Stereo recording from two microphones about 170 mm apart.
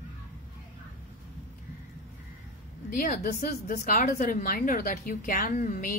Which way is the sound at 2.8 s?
55° left (ahead or behind).